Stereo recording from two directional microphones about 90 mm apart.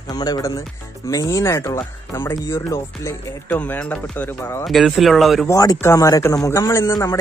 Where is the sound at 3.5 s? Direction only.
15° left (ahead or behind).